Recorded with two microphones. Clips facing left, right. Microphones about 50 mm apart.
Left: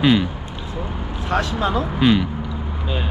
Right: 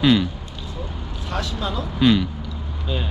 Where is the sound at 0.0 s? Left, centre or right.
Centre.